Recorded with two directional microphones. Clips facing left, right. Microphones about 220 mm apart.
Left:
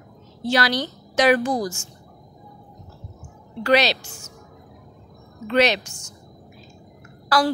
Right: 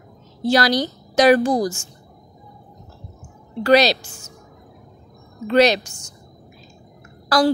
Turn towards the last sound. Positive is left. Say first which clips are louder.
# right 4 dB
turn(degrees=-40)  # may be behind; listen again after turning